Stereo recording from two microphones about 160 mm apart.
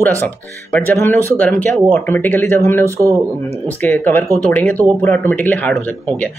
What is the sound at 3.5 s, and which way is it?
Speech, 10° left (ahead or behind).